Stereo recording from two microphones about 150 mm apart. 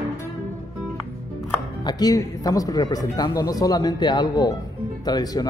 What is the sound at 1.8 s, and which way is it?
Speech, 25° left (ahead or behind).